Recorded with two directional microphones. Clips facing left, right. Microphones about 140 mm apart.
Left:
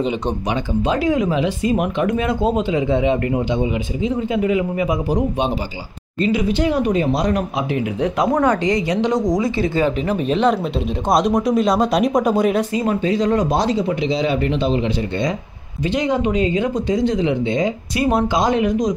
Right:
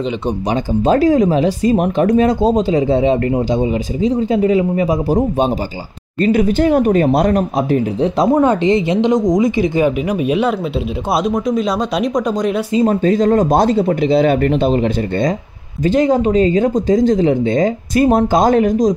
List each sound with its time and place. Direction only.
0.5 s speech: 40° right (ahead or behind)
6.2 s speech: 50° right (ahead or behind)
8.0 s speech: 30° right (ahead or behind); by 12.6 s 5° left (ahead or behind)
12.8 s speech: 45° right (ahead or behind)